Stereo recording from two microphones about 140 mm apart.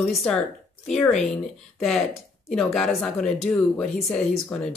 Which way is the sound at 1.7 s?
Centre (ahead or behind).